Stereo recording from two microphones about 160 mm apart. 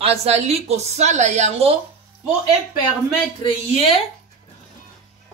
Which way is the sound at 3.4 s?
35° left (ahead or behind).